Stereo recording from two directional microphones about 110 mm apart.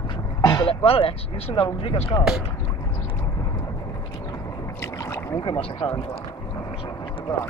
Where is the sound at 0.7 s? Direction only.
60° left (ahead or behind).